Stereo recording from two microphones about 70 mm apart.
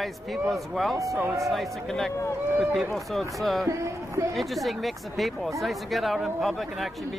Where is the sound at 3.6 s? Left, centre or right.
Right.